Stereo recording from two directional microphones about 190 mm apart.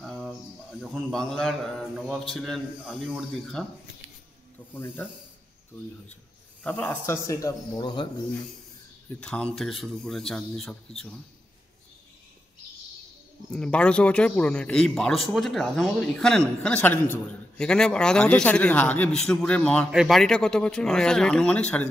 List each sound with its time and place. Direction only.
0.0 s speech: centre (ahead or behind)
4.7 s speech: 10° left (ahead or behind)
6.6 s speech: 10° left (ahead or behind)
9.2 s speech: 5° left (ahead or behind)
13.5 s speech: 5° left (ahead or behind)